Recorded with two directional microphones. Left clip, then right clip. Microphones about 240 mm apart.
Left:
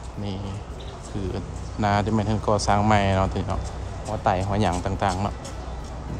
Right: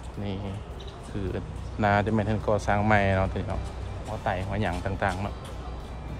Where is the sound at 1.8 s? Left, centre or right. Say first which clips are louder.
Left 1 dB; centre.